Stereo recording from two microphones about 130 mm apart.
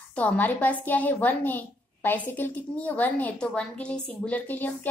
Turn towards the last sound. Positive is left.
turn(degrees=15)  # may be behind; listen again after turning